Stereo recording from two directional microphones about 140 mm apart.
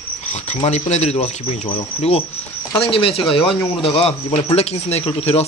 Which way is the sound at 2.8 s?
40° left (ahead or behind).